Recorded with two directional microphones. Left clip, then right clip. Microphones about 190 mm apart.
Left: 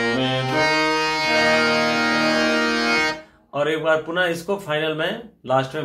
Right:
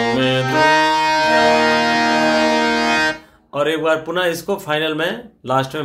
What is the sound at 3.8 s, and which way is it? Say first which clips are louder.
Speech: right 2 dB; 40° right (ahead or behind).